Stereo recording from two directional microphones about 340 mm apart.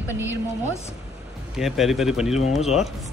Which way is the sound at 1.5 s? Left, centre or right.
Centre.